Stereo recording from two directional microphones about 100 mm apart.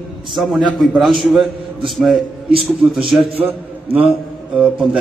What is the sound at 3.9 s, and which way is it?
Speech, 15° right (ahead or behind).